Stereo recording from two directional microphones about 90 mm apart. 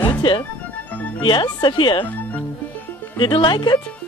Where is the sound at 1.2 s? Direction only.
65° left (ahead or behind).